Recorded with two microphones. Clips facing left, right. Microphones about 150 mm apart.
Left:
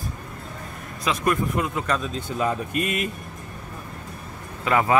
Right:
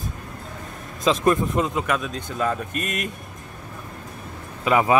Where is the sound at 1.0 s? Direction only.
25° right (ahead or behind).